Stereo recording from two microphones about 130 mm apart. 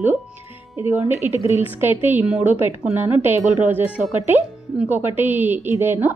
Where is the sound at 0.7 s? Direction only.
20° right (ahead or behind).